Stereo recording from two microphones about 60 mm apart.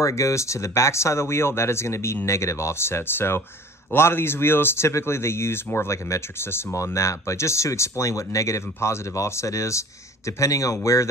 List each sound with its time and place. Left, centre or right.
0.0 s speech: left
6.0 s speech: left